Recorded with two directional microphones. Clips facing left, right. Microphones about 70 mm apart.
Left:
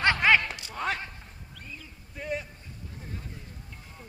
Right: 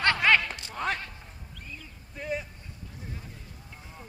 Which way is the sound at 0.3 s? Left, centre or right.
Centre.